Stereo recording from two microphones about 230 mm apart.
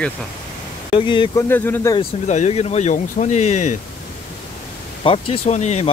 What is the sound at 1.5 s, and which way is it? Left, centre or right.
Speech, centre.